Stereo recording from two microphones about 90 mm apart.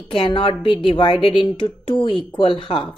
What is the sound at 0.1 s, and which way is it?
A woman's voice, 75° left (ahead or behind).